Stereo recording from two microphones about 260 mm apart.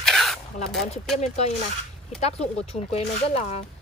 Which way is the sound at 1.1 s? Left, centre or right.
Left.